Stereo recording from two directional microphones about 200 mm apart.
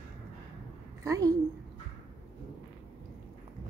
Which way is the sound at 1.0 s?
15° right (ahead or behind).